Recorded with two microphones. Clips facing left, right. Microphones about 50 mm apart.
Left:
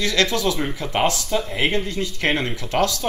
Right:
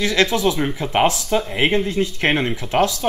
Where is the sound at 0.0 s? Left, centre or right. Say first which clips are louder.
Right 3 dB; right.